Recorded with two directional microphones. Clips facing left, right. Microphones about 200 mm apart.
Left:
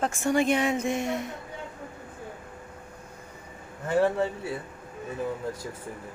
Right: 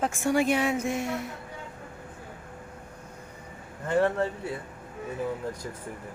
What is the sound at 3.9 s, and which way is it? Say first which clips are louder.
Speech: left 1 dB; 10° left (ahead or behind).